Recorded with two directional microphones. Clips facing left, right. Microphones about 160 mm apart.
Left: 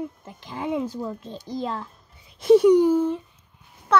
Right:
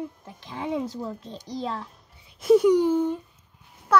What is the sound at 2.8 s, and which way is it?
Speech, 10° left (ahead or behind).